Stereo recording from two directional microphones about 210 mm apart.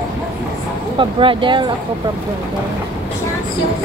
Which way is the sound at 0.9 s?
25° right (ahead or behind).